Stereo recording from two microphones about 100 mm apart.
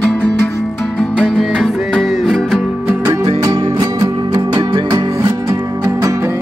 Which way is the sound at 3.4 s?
40° right (ahead or behind).